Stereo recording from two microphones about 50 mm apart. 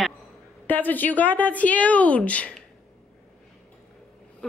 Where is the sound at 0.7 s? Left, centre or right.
Left.